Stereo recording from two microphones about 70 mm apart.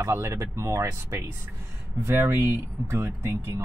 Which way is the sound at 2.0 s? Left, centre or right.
Right.